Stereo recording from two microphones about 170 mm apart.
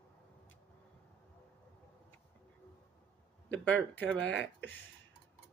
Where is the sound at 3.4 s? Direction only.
10° left (ahead or behind).